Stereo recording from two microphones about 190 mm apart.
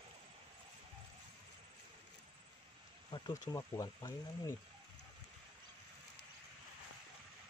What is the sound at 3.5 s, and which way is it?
Speech, 20° left (ahead or behind).